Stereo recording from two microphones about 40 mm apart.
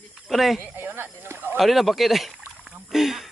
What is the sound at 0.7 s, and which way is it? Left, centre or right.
Speech, right.